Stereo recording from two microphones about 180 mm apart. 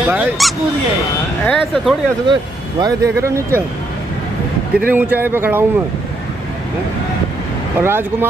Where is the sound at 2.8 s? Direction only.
15° right (ahead or behind).